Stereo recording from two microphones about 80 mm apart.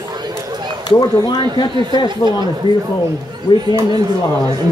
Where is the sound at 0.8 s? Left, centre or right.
Left.